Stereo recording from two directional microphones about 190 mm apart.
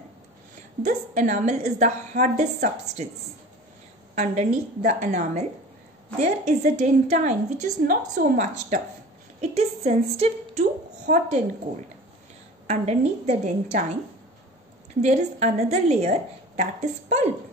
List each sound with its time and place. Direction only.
0.8 s a woman's voice: 55° right (ahead or behind)
1.3 s a woman's voice: 40° right (ahead or behind)
4.1 s a woman's voice: 40° right (ahead or behind)
12.6 s a woman's voice: 35° right (ahead or behind)
15.0 s a woman's voice: 40° right (ahead or behind)